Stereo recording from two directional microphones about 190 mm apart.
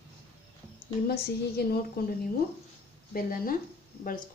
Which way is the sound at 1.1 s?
55° left (ahead or behind).